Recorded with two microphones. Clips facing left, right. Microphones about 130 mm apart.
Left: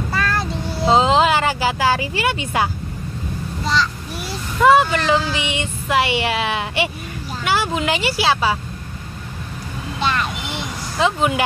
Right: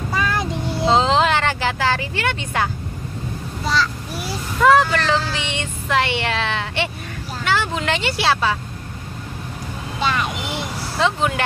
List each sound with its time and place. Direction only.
0.1 s vehicle: 15° right (ahead or behind)
0.8 s vehicle: 5° left (ahead or behind)
3.6 s a sound: 5° right (ahead or behind)
4.6 s a sound: 5° left (ahead or behind)
7.4 s speech: 10° left (ahead or behind)
9.9 s vehicle: 10° right (ahead or behind)
11.0 s speech: 5° left (ahead or behind)